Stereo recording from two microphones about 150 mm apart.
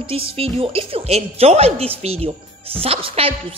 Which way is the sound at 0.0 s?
40° right (ahead or behind).